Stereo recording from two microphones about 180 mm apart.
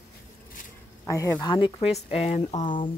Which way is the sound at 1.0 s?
20° left (ahead or behind).